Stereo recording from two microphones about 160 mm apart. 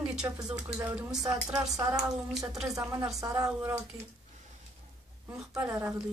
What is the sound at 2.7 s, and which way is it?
Speech, 20° right (ahead or behind).